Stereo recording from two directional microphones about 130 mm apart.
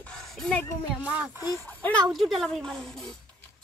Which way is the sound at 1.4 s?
25° left (ahead or behind).